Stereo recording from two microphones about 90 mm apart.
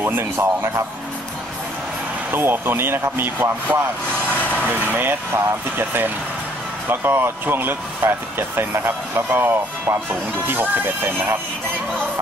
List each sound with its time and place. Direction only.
0.0 s speech: 25° right (ahead or behind)
2.3 s speech: 25° right (ahead or behind)
4.4 s vehicle: 20° left (ahead or behind)
4.6 s speech: 20° right (ahead or behind)